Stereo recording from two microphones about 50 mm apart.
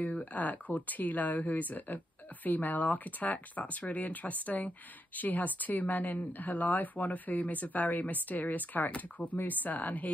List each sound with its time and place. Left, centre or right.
0.0 s speech: left